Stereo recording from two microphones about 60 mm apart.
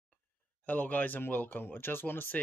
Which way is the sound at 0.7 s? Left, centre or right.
Left.